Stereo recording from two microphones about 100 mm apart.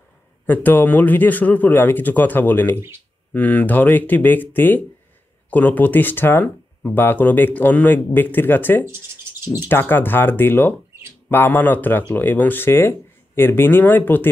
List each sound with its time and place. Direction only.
0.5 s speech: 20° left (ahead or behind)
8.8 s a sound: 25° right (ahead or behind)
9.7 s speech: 20° left (ahead or behind)